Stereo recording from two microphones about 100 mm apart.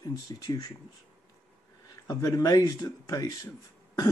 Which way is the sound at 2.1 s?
35° left (ahead or behind).